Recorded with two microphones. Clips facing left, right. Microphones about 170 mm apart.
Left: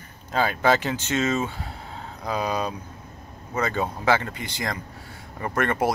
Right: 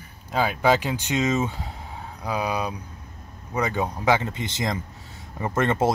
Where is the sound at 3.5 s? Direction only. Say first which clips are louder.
Right 1 dB; 15° right (ahead or behind).